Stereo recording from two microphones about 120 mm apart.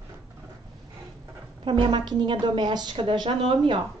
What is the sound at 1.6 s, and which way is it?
A woman's voice, 45° right (ahead or behind).